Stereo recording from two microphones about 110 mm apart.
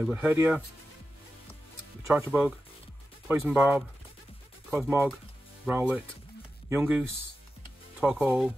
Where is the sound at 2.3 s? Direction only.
10° right (ahead or behind).